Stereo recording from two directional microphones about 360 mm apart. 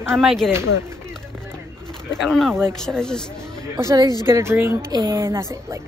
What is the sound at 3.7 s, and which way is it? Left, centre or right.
A woman's voice, centre.